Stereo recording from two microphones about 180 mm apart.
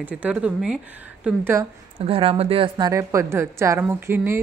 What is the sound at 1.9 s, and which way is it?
Speech, 30° right (ahead or behind).